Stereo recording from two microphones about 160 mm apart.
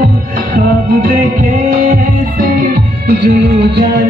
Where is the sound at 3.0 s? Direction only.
90° right.